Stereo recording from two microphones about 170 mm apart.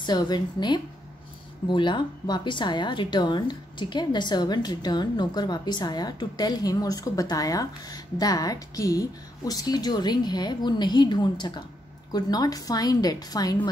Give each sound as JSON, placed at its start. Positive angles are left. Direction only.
{"t": 0.0, "sound": "a woman's voice", "side_deg": 25}